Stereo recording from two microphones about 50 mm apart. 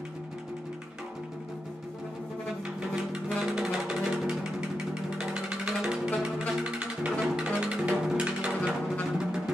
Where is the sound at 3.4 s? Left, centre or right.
Centre.